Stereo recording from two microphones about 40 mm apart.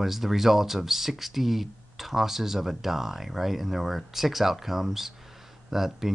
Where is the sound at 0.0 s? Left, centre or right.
Centre.